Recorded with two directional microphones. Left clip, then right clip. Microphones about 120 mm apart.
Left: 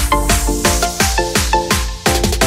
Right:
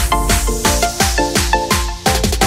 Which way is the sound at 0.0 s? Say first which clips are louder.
Left 1 dB; centre (ahead or behind).